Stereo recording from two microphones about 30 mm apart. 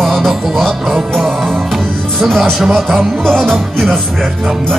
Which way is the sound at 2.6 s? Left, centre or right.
Centre.